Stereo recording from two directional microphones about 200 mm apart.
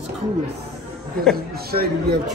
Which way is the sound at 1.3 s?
50° right (ahead or behind).